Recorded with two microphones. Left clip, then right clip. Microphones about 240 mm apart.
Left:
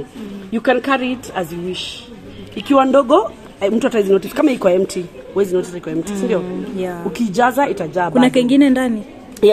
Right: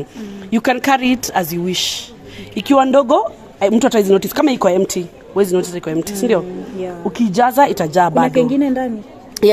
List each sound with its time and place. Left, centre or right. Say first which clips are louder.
0.5 s speech: right 1 dB; right
2.7 s speech: even; right
7.5 s speech: right 5 dB; right
8.3 s a woman's voice: left 2 dB; centre